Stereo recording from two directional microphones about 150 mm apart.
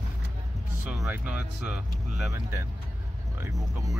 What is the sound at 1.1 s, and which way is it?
Speech, 10° right (ahead or behind).